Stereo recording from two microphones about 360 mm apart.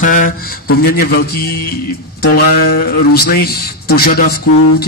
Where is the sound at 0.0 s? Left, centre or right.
Left.